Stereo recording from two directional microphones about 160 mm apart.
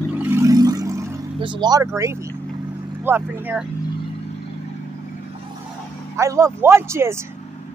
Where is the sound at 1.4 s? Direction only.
30° right (ahead or behind); by 3.6 s 10° right (ahead or behind).